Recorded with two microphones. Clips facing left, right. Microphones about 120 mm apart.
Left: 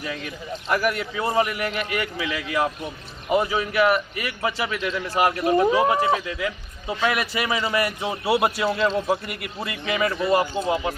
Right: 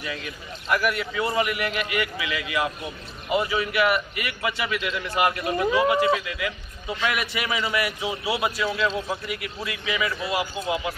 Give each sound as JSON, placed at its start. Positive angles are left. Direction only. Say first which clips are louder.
{"t": 0.7, "sound": "a man's voice", "louder": "left 1 dB", "side_deg": 40}
{"t": 8.0, "sound": "a man's voice", "louder": "left 4 dB", "side_deg": 50}